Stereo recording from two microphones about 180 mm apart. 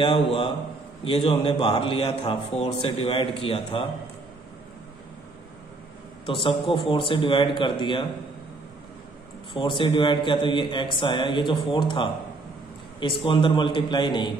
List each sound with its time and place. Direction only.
0.0 s a man's voice: 30° left (ahead or behind)
6.2 s a man's voice: 30° left (ahead or behind)
9.5 s a man's voice: 25° left (ahead or behind)